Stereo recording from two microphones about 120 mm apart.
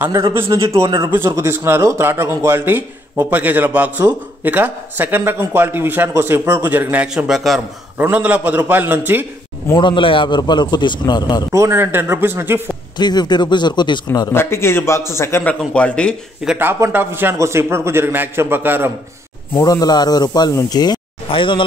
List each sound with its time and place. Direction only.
0.1 s a man's voice: 25° right (ahead or behind)
1.1 s a man's voice: 25° right (ahead or behind)
7.3 s a man's voice: centre (ahead or behind)
8.0 s a man's voice: 15° right (ahead or behind)
9.8 s speech: 40° left (ahead or behind)
11.5 s a man's voice: 20° right (ahead or behind)
12.9 s speech: 35° left (ahead or behind)
14.3 s a man's voice: 20° left (ahead or behind)
15.7 s speech: 10° left (ahead or behind)
16.5 s a man's voice: 15° right (ahead or behind)
19.5 s speech: 30° left (ahead or behind); by 21.6 s 45° left (ahead or behind)